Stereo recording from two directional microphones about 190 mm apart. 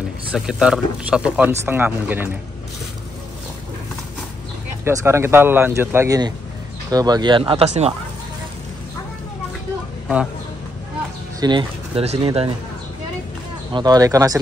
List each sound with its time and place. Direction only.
0.3 s speech: 5° right (ahead or behind)
4.8 s speech: 15° right (ahead or behind); by 7.9 s 35° right (ahead or behind)
11.3 s speech: 20° right (ahead or behind)
13.7 s speech: 20° right (ahead or behind)